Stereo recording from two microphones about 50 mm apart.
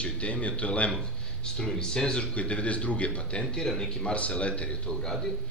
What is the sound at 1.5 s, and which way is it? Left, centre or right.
Speech, centre.